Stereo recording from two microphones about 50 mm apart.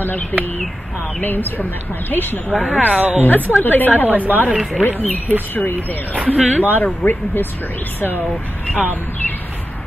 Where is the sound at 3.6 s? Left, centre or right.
Left.